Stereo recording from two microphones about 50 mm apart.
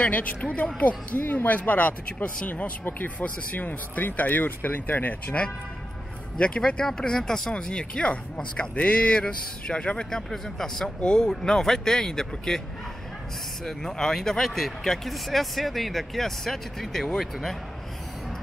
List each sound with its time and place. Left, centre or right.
0.0 s speech: left
6.3 s speech: centre
10.3 s speech: centre
13.7 s speech: centre